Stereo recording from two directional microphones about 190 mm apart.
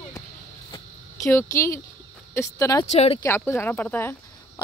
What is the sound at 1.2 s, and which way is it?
Speech, 15° left (ahead or behind).